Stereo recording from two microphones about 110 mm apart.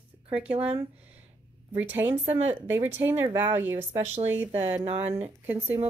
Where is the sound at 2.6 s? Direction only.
20° right (ahead or behind).